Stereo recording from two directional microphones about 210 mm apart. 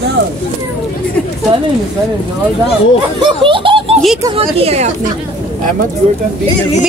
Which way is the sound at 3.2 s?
25° right (ahead or behind).